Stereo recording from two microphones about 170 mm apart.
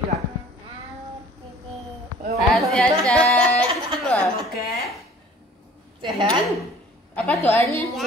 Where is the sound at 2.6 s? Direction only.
5° left (ahead or behind).